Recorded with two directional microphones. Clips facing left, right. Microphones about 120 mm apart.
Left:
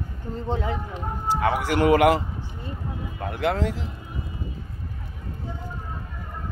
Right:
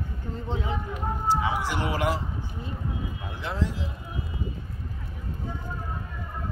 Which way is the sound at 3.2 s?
65° left (ahead or behind).